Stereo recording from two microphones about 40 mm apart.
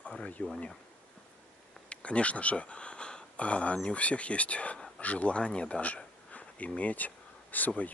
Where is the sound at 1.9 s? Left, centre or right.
Left.